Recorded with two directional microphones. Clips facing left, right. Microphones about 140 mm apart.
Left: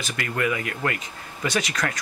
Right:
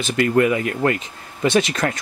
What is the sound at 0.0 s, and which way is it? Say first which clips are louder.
Speech: right 10 dB; 30° right (ahead or behind).